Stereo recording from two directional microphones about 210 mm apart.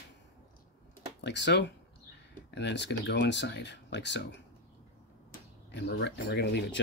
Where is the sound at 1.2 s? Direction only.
55° left (ahead or behind).